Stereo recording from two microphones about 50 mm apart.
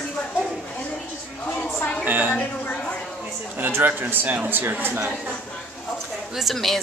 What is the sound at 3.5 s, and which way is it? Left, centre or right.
A man's voice, right.